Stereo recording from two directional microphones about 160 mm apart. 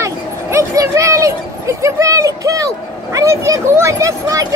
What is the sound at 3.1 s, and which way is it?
Speech, 20° right (ahead or behind).